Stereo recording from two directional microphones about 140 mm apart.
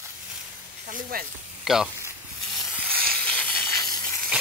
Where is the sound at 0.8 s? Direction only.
75° right (ahead or behind).